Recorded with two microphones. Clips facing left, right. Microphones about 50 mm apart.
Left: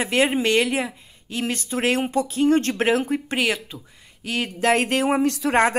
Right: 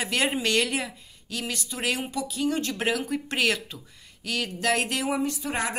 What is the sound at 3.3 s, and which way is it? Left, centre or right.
Speech, centre.